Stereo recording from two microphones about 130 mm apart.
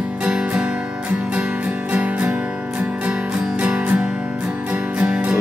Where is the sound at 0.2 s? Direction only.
10° right (ahead or behind).